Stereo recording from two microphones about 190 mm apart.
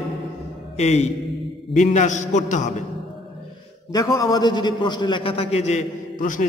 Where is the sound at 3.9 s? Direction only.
20° left (ahead or behind).